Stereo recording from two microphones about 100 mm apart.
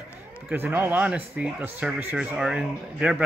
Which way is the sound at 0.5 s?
20° right (ahead or behind).